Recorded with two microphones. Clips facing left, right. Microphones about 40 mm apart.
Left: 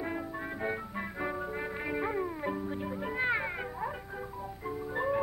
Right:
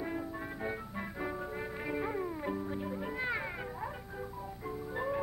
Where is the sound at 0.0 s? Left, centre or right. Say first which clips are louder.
Left 2 dB; centre.